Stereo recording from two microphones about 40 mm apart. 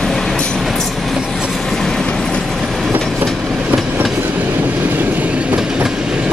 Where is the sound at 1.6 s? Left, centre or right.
Centre.